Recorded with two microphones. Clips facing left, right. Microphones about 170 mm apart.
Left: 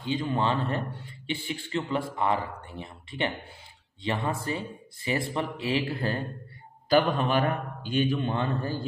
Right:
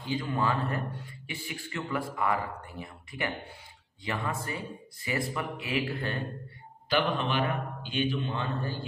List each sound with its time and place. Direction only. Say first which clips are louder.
0.0 s a man's voice: left 3 dB; 25° left (ahead or behind)
6.9 s a man's voice: left 5 dB; 45° left (ahead or behind)